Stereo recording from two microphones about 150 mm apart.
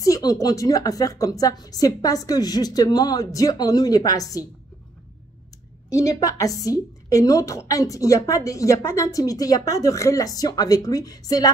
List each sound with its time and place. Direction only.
0.0 s speech: 25° left (ahead or behind)
5.9 s speech: 20° left (ahead or behind)